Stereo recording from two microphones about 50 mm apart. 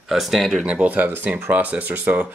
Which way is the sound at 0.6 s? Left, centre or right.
Right.